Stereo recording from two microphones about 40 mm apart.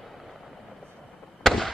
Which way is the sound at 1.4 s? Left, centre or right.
Centre.